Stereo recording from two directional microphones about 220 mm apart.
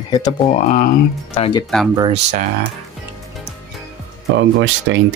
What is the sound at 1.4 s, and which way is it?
Speech, 20° left (ahead or behind).